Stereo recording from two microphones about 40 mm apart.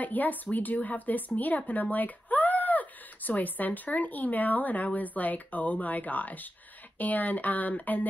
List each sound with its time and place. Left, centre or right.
0.0 s speech: left